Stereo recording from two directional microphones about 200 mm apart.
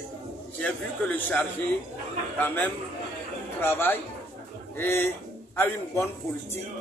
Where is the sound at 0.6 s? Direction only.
5° left (ahead or behind).